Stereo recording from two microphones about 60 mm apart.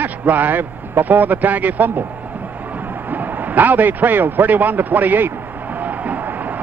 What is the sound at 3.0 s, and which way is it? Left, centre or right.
A man's voice, right.